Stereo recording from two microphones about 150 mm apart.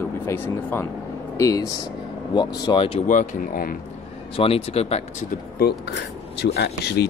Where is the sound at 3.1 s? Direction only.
60° left (ahead or behind).